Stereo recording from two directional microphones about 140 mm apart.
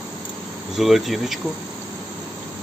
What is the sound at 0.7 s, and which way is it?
Speech, centre (ahead or behind).